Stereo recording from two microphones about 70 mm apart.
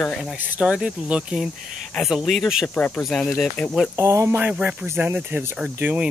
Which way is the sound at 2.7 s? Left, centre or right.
Centre.